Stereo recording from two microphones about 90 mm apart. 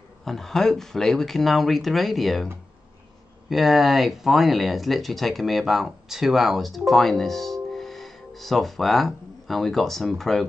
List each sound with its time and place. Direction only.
0.2 s speech: 5° left (ahead or behind)
3.4 s speech: centre (ahead or behind)